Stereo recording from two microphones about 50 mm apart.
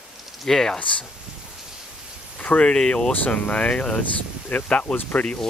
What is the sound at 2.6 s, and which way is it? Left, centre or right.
Speech, centre.